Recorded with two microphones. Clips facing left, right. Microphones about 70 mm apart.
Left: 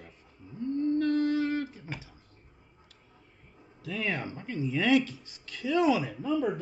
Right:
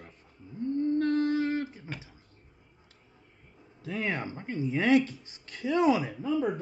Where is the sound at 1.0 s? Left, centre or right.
Right.